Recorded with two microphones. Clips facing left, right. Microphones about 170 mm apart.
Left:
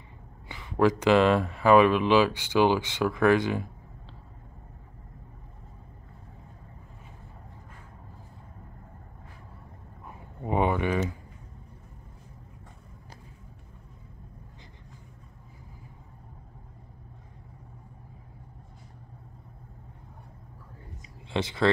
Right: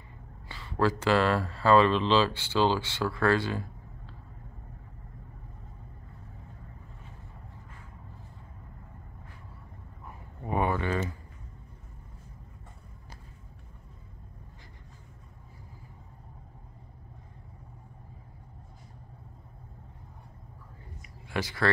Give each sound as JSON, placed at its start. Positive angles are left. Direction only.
{"t": 0.5, "sound": "speech", "side_deg": 15}
{"t": 10.0, "sound": "a sound", "side_deg": 20}
{"t": 21.3, "sound": "speech", "side_deg": 25}